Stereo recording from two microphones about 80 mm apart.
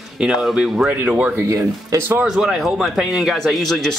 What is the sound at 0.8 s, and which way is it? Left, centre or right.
Speech, centre.